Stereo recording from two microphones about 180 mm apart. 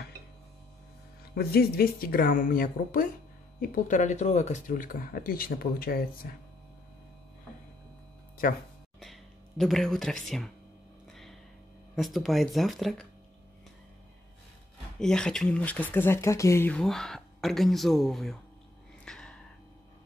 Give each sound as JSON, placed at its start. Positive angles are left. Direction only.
{"t": 1.3, "sound": "speech", "side_deg": 60}
{"t": 9.0, "sound": "a sound", "side_deg": 0}
{"t": 10.2, "sound": "speech", "side_deg": 0}
{"t": 11.9, "sound": "speech", "side_deg": 0}
{"t": 15.0, "sound": "speech", "side_deg": 5}
{"t": 19.0, "sound": "a sound", "side_deg": 5}